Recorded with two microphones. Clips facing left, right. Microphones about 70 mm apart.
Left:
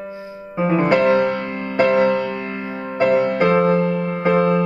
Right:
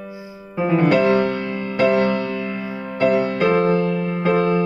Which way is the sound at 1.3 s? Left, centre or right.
Left.